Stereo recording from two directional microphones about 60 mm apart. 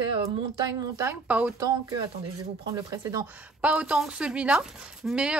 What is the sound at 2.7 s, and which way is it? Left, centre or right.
Speech, right.